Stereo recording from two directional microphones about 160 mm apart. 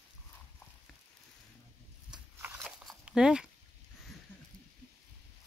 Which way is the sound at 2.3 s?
10° right (ahead or behind).